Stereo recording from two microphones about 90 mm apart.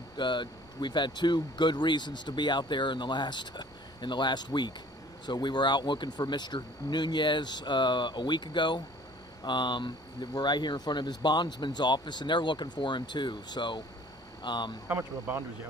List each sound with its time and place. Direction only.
0.2 s speech: 60° left (ahead or behind)
14.9 s speech: 20° right (ahead or behind)